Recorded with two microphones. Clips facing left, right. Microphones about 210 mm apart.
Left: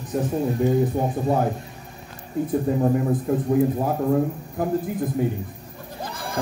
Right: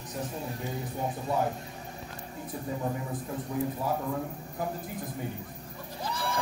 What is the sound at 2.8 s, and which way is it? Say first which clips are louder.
A man's voice: left 12 dB; 50° left (ahead or behind).